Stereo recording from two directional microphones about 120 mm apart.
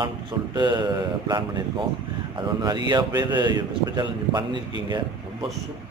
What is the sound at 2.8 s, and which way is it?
Speech, 35° right (ahead or behind).